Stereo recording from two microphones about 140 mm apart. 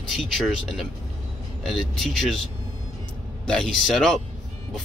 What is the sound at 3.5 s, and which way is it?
Speech, 5° left (ahead or behind).